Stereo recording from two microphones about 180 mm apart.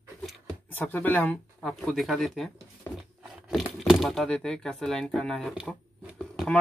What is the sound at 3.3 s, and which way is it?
Speech, centre (ahead or behind).